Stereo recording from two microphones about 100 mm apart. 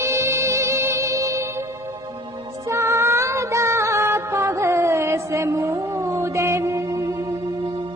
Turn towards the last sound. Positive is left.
turn(degrees=-35)  # may be behind; listen again after turning